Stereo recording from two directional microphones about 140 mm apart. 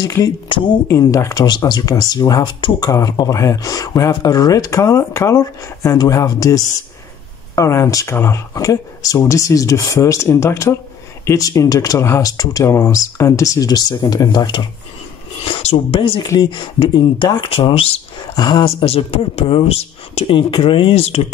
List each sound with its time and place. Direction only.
0.0 s speech: 25° left (ahead or behind); by 18.3 s 45° left (ahead or behind)
18.3 s speech: 30° left (ahead or behind); by 21.2 s 50° left (ahead or behind)